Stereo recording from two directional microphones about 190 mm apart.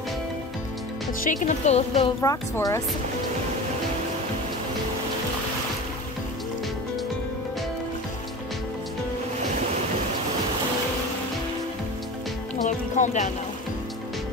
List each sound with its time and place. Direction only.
1.2 s speech: 40° left (ahead or behind)
2.2 s a woman's voice: 15° left (ahead or behind)
12.6 s music: 40° left (ahead or behind)